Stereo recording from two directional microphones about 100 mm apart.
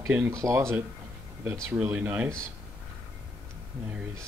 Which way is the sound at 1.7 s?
10° right (ahead or behind).